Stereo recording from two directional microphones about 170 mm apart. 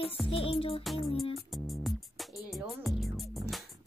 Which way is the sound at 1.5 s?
Centre (ahead or behind).